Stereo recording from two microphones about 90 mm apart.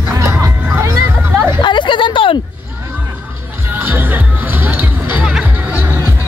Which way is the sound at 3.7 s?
20° right (ahead or behind).